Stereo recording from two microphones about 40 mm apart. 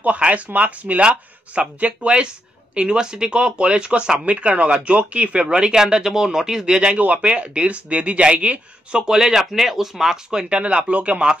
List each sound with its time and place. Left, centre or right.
0.0 s speech: right
7.0 s speech: right
9.0 s speech: centre
10.5 s speech: right